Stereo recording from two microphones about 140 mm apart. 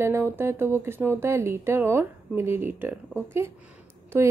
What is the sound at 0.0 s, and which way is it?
Speech, 20° right (ahead or behind).